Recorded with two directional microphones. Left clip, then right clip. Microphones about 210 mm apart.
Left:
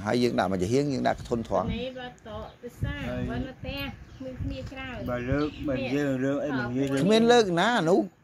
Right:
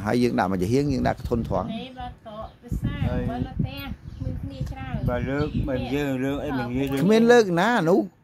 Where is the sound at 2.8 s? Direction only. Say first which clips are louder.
Right 4 dB; 25° right (ahead or behind).